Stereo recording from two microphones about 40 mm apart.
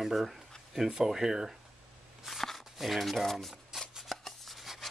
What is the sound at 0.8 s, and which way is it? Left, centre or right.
Speech, centre.